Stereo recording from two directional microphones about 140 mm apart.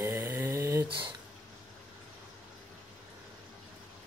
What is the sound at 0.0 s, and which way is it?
Mantra, 20° right (ahead or behind).